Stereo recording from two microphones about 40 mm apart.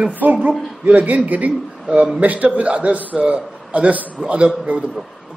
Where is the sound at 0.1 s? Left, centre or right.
Right.